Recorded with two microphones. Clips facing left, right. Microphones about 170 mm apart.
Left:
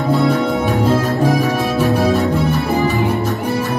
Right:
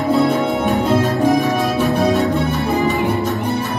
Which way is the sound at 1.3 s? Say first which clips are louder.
Even; centre (ahead or behind).